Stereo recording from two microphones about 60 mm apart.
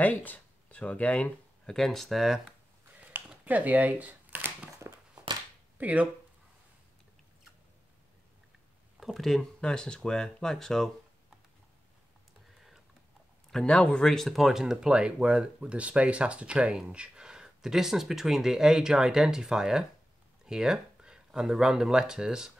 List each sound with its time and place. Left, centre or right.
0.0 s speech: left
1.7 s speech: centre
3.4 s speech: right
5.8 s speech: right
9.0 s speech: centre
13.5 s speech: centre